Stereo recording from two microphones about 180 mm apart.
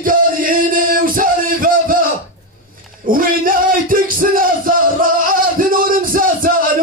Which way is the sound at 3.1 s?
50° right (ahead or behind).